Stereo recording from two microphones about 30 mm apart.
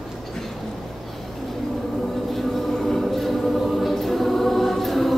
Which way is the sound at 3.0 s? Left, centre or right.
Centre.